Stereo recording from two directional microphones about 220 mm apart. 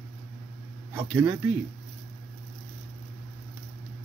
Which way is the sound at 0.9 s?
10° right (ahead or behind).